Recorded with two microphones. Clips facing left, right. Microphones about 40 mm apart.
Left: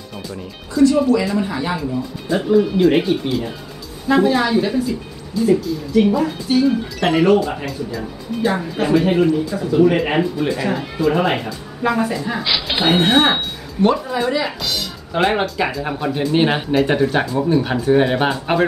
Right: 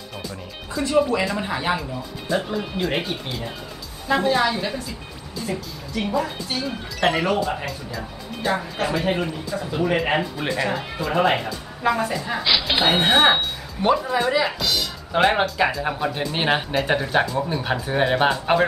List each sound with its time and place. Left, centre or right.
0.8 s speech: right
1.8 s speech: centre